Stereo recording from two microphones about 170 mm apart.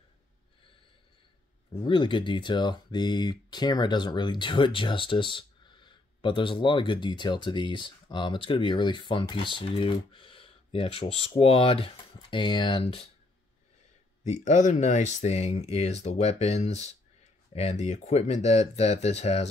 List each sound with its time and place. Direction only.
1.9 s speech: 30° left (ahead or behind)
14.2 s speech: 45° left (ahead or behind)